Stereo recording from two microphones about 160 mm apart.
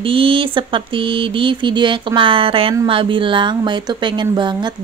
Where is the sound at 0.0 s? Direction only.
35° right (ahead or behind).